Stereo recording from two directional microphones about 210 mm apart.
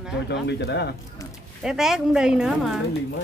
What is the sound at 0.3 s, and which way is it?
Speech, 50° left (ahead or behind).